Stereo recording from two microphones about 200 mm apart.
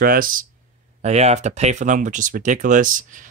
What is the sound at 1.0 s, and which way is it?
Speech, 35° right (ahead or behind).